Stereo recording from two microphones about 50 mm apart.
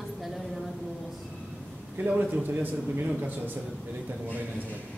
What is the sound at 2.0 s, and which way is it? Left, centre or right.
A man's voice, right.